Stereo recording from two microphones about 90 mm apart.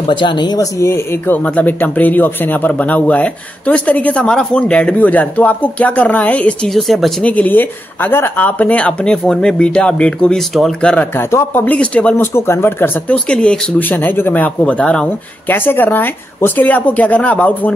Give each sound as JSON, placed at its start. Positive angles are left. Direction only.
{"t": 0.0, "sound": "speech", "side_deg": 65}
{"t": 0.6, "sound": "speech", "side_deg": 35}
{"t": 6.7, "sound": "speech", "side_deg": 0}
{"t": 7.2, "sound": "speech", "side_deg": 20}
{"t": 11.1, "sound": "speech", "side_deg": 25}
{"t": 12.2, "sound": "speech", "side_deg": 30}
{"t": 13.1, "sound": "speech", "side_deg": 10}
{"t": 15.5, "sound": "speech", "side_deg": 25}